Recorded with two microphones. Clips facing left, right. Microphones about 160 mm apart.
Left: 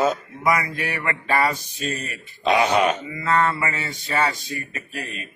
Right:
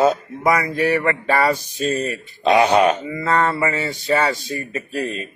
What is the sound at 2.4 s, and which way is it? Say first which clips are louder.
Speech: right 4 dB; 60° right (ahead or behind).